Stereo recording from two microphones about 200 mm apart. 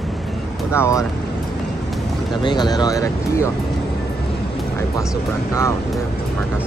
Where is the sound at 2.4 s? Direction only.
20° left (ahead or behind).